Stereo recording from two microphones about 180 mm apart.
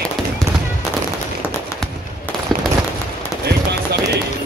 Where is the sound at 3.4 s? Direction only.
65° right (ahead or behind).